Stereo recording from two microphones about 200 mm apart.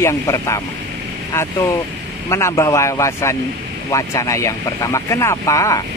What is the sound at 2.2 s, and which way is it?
Speech, 15° left (ahead or behind).